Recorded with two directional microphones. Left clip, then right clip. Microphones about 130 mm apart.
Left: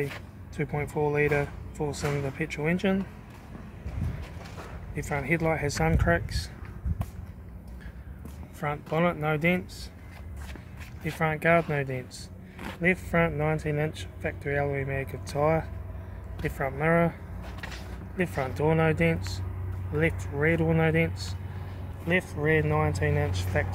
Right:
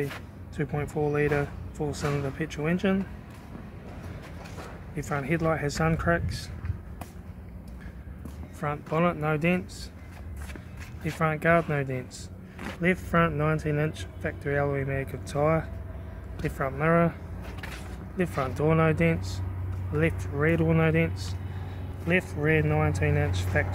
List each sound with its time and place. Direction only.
0.6 s speech: 5° left (ahead or behind)
4.9 s speech: 5° left (ahead or behind)
8.5 s speech: 5° left (ahead or behind)
11.1 s speech: centre (ahead or behind)
12.5 s a sound: 50° left (ahead or behind)
12.8 s speech: 5° right (ahead or behind)
18.1 s speech: centre (ahead or behind)